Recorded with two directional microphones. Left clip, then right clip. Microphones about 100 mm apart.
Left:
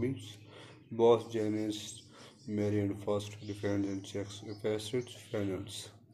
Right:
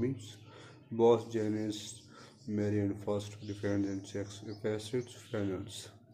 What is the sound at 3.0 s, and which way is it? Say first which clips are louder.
Speech: left 2 dB; 30° right (ahead or behind).